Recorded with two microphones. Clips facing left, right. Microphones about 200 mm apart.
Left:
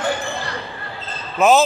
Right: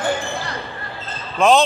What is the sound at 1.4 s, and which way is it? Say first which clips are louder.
Speech: even; 5° left (ahead or behind).